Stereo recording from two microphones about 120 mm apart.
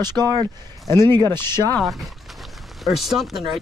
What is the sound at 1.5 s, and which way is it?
Speech, 20° left (ahead or behind).